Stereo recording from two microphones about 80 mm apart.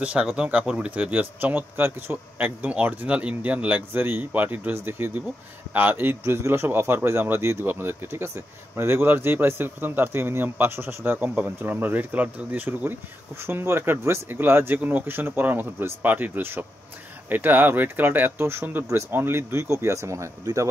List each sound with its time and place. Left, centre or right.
0.0 s speech: centre; by 20.6 s right